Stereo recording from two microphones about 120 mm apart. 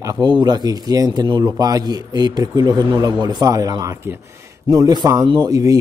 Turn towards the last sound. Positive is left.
turn(degrees=-30)  # may be behind; listen again after turning